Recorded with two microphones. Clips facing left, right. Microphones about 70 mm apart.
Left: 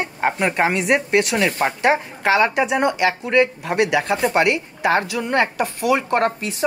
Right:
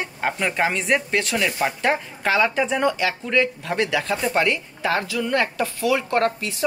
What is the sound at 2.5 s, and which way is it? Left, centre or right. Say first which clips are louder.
Speech: left 3 dB; centre.